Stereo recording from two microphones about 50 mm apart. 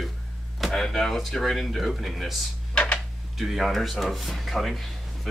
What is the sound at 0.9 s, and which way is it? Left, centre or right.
Speech, centre.